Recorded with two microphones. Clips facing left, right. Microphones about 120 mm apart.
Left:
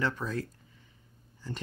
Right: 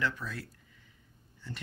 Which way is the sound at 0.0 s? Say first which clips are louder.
Left 3 dB; 45° left (ahead or behind).